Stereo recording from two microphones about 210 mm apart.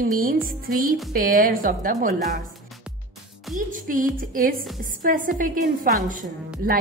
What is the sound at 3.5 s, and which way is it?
A woman's voice, 40° right (ahead or behind).